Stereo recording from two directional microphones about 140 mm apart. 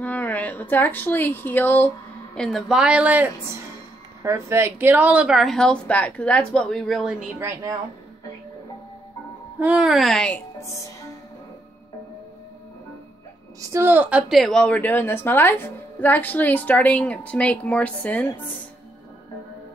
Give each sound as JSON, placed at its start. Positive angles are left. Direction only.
{"t": 0.0, "sound": "a woman's voice", "side_deg": 10}
{"t": 2.3, "sound": "a woman's voice", "side_deg": 0}
{"t": 7.3, "sound": "a woman's voice", "side_deg": -20}
{"t": 9.6, "sound": "a woman's voice", "side_deg": -10}
{"t": 10.6, "sound": "music", "side_deg": 20}
{"t": 13.6, "sound": "a woman's voice", "side_deg": -20}